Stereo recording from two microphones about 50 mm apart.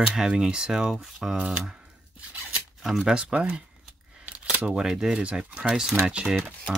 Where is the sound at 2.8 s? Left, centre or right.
Centre.